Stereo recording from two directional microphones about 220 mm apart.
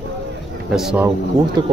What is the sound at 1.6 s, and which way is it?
Speech, 20° right (ahead or behind).